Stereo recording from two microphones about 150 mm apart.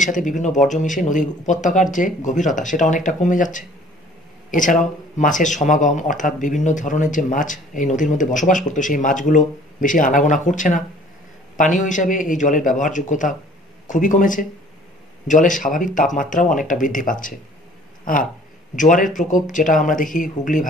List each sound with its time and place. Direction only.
0.0 s speech: 55° left (ahead or behind)
11.8 s speech: 60° left (ahead or behind)